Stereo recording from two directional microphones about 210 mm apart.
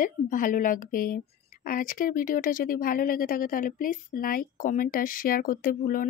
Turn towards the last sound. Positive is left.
turn(degrees=40)  # may be behind; listen again after turning